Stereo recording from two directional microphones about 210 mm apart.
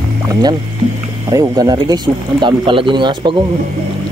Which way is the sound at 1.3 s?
20° right (ahead or behind).